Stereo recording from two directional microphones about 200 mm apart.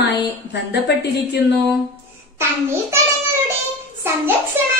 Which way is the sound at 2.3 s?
10° right (ahead or behind).